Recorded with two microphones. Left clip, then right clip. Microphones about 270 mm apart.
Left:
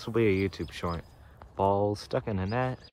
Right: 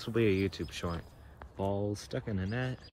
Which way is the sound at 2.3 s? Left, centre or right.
Centre.